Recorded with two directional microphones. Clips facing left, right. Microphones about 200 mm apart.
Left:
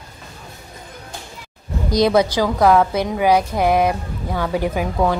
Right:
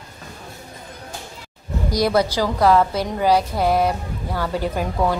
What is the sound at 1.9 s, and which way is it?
A woman's voice, 20° left (ahead or behind).